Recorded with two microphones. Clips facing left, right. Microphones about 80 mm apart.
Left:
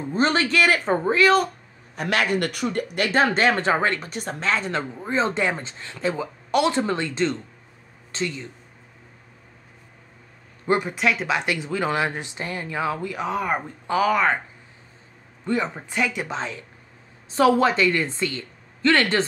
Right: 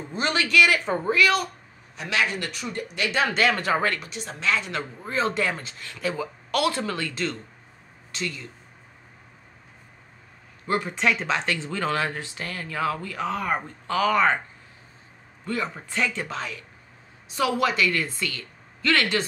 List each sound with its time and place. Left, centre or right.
0.1 s a woman's voice: left
2.0 s speech: left
3.3 s speech: left
4.0 s a woman's voice: left
5.0 s speech: left
10.7 s speech: centre
11.0 s speech: centre
14.1 s speech: centre
15.4 s speech: left
16.0 s speech: centre
16.3 s a woman's voice: left